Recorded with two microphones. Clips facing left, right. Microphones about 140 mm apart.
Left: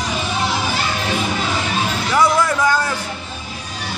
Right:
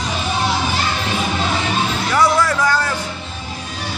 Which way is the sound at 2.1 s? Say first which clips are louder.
Even; 20° left (ahead or behind).